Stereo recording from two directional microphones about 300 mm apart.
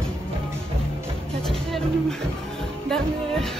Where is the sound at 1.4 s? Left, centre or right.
Centre.